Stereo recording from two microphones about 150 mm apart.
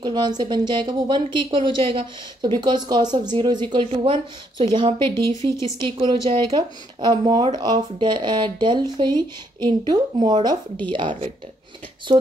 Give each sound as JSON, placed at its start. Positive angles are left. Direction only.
{"t": 0.0, "sound": "speech", "side_deg": -30}